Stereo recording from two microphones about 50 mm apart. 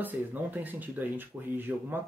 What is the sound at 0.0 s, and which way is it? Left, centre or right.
A man's voice, right.